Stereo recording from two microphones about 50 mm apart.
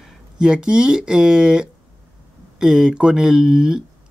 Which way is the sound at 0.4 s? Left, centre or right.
Centre.